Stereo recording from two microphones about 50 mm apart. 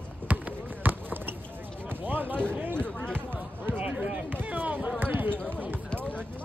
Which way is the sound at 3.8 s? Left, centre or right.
Right.